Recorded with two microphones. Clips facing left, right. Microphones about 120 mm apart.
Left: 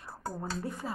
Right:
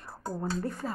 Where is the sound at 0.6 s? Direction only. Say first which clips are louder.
Right 3 dB; 10° left (ahead or behind).